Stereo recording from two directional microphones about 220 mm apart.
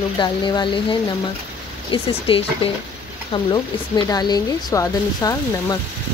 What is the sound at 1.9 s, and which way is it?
Speech, 25° left (ahead or behind).